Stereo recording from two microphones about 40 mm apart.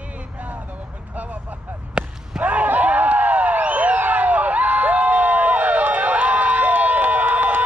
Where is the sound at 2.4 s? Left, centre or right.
Right.